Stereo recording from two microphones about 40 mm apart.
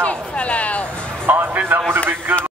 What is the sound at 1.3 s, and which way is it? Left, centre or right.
Music, right.